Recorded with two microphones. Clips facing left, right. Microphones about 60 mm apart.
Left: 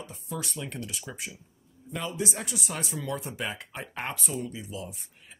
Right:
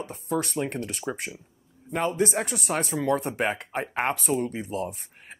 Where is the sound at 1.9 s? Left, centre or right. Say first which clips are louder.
Right 8 dB; right.